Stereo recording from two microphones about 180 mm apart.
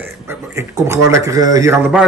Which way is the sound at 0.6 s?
15° right (ahead or behind).